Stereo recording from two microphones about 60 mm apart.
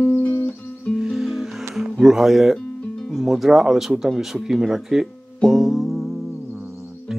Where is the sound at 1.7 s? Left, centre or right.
Centre.